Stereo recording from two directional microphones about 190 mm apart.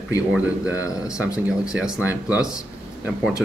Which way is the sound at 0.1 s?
10° right (ahead or behind).